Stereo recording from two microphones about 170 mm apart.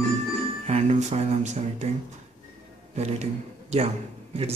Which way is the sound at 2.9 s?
40° right (ahead or behind).